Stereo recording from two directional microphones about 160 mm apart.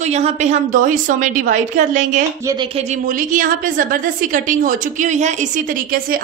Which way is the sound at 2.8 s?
50° right (ahead or behind).